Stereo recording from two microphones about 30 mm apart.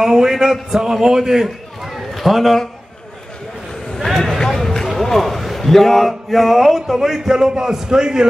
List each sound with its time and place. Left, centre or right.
0.0 s a man's voice: centre
2.0 s a sound: centre
4.5 s a man's voice: centre; by 8.3 s right